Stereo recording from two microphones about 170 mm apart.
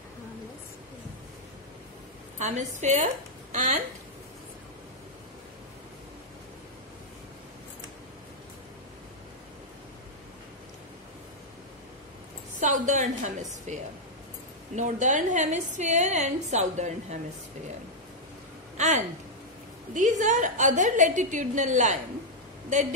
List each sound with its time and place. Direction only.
2.3 s a woman's voice: 45° right (ahead or behind)
12.5 s a sound: 45° right (ahead or behind)
14.8 s a woman's voice: 45° right (ahead or behind)
18.8 s a woman's voice: 45° right (ahead or behind)